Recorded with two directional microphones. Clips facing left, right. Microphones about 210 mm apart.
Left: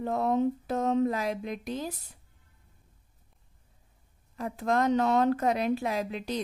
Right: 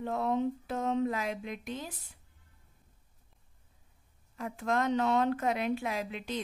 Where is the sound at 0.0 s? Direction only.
40° left (ahead or behind).